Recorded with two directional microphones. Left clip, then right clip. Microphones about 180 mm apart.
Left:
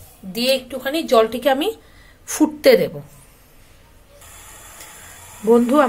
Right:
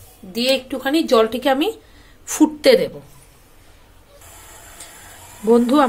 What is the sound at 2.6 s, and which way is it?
Speech, 15° left (ahead or behind).